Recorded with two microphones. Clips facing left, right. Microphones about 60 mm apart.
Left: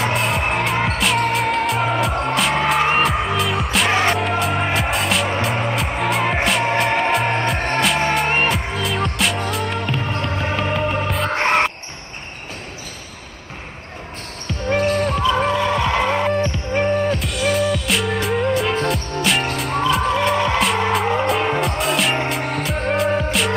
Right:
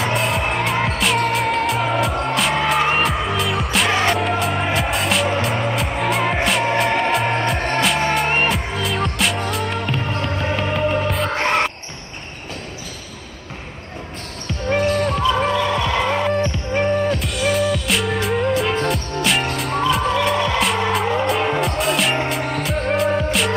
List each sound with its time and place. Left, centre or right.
0.0 s music: centre
11.3 s music: centre
15.0 s music: centre
15.8 s music: centre
16.1 s music: centre